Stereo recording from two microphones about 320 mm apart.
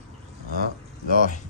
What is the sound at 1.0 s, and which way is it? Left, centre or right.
Speech, left.